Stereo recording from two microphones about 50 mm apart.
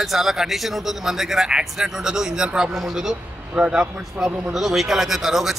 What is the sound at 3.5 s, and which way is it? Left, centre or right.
A man's voice, centre.